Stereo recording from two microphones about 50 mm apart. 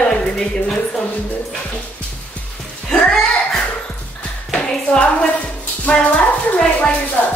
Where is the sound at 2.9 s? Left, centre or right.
Centre.